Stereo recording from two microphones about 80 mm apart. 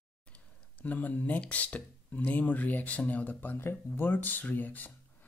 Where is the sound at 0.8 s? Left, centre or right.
Centre.